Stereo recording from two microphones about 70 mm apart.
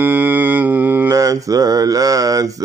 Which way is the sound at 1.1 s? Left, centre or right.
Right.